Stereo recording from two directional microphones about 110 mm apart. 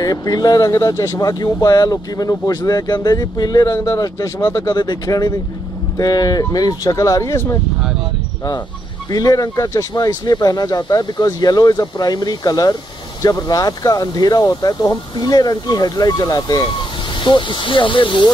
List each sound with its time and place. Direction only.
0.0 s speech: 35° left (ahead or behind)
9.1 s speech: 35° left (ahead or behind)
17.2 s speech: 45° left (ahead or behind)